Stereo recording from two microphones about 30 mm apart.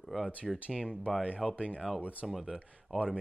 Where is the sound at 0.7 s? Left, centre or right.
Right.